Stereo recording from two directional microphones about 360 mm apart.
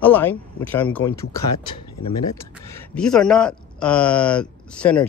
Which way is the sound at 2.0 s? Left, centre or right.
Left.